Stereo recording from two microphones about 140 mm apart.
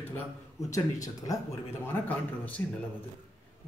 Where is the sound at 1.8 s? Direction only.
15° left (ahead or behind).